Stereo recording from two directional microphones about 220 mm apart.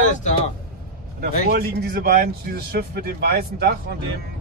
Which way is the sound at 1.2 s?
45° right (ahead or behind).